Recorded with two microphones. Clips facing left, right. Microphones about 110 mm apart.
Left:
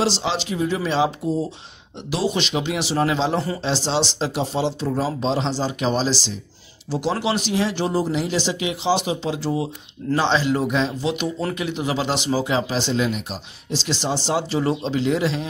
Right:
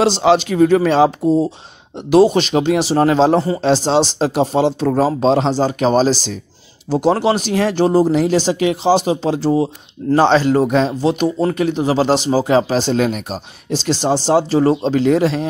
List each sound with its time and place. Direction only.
0.0 s speech: 55° right (ahead or behind)